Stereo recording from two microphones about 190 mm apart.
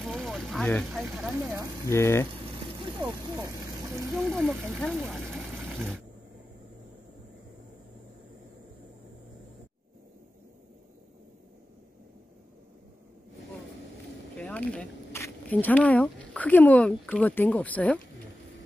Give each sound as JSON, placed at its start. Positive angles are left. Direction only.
{"t": 0.0, "sound": "speech", "side_deg": 0}
{"t": 1.9, "sound": "speech", "side_deg": 15}
{"t": 2.9, "sound": "speech", "side_deg": -20}
{"t": 4.2, "sound": "speech", "side_deg": 0}
{"t": 14.3, "sound": "speech", "side_deg": 5}